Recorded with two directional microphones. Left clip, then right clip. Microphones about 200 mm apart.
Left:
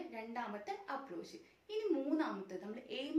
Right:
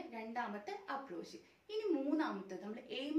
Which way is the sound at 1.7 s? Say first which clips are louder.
Even; 10° left (ahead or behind).